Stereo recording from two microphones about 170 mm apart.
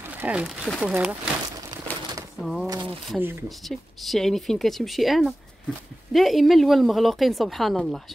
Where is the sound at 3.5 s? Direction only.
Centre (ahead or behind).